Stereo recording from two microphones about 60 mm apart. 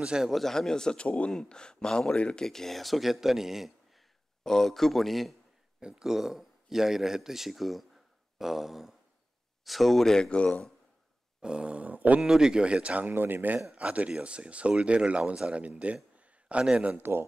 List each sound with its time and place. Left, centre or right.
0.0 s speech: centre
0.3 s speech: centre
4.4 s speech: centre
5.8 s speech: centre
11.4 s speech: centre
12.2 s speech: centre
13.1 s speech: right
13.7 s speech: centre
16.8 s speech: right